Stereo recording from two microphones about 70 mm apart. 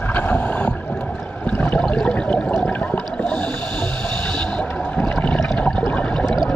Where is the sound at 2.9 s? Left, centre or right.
Centre.